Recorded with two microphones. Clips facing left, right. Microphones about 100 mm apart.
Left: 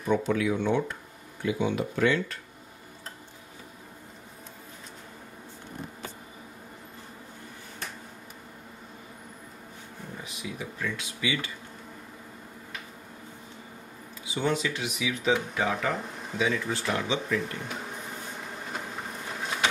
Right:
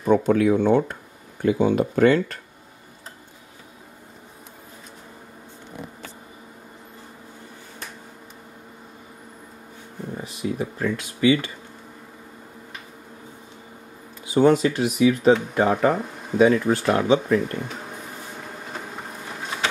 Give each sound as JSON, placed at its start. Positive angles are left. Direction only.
{"t": 0.0, "sound": "speech", "side_deg": -45}
{"t": 10.2, "sound": "speech", "side_deg": -35}
{"t": 11.0, "sound": "speech", "side_deg": -45}
{"t": 14.2, "sound": "speech", "side_deg": -50}
{"t": 18.9, "sound": "a sound", "side_deg": -5}